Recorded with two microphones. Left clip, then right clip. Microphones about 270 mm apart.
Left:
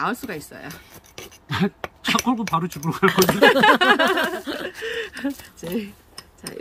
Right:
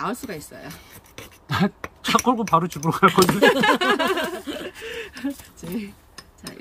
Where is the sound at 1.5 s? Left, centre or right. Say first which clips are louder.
Right 1 dB; centre.